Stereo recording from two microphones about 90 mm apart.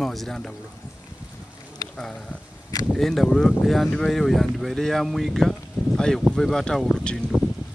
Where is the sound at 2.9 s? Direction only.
Centre (ahead or behind).